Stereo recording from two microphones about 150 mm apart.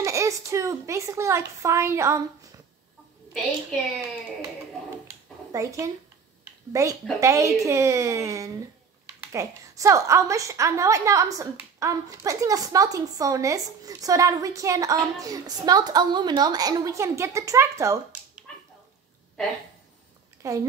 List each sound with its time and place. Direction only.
0.0 s a child's voice: 20° right (ahead or behind)
5.5 s a woman's voice: 20° right (ahead or behind)
20.4 s a woman's voice: 20° right (ahead or behind)